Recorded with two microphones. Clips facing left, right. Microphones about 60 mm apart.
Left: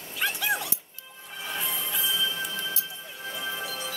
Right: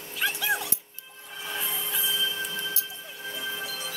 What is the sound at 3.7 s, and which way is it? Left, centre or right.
Music, left.